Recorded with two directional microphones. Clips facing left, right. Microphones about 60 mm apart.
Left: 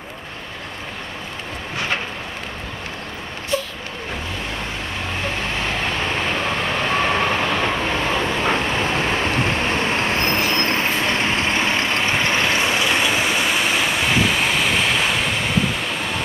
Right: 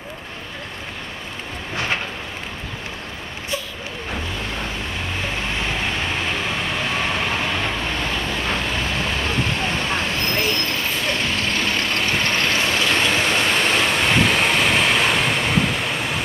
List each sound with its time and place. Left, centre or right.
6.0 s vehicle: centre
7.6 s vehicle: centre